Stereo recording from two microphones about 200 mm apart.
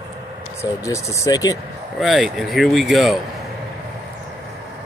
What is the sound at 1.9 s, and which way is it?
Speech, centre (ahead or behind).